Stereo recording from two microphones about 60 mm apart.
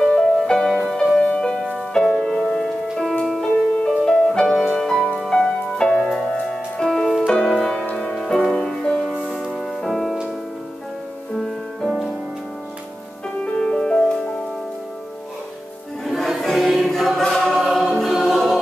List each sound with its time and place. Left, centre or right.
0.0 s music: centre
1.2 s music: centre
9.4 s music: centre
11.3 s music: centre
13.4 s music: centre
16.1 s choir: centre